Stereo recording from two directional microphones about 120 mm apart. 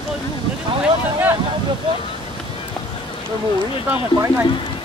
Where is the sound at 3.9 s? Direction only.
20° right (ahead or behind).